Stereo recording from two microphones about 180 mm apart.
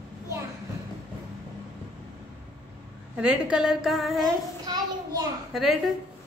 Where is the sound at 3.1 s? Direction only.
5° right (ahead or behind).